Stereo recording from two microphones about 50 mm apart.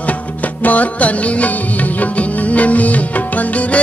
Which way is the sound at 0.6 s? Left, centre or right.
Left.